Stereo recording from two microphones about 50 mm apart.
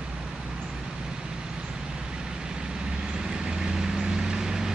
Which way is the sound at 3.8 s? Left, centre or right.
Centre.